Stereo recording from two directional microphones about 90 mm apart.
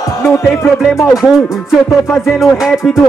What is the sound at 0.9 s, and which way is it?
Speech, 35° left (ahead or behind).